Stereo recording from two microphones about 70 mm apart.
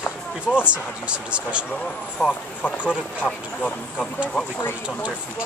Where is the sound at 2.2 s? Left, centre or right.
Centre.